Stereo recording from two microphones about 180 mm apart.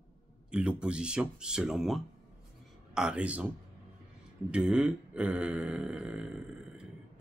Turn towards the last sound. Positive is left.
turn(degrees=-5)  # may be behind; listen again after turning